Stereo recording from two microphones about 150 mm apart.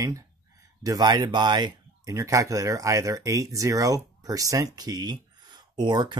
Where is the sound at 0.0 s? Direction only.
20° right (ahead or behind).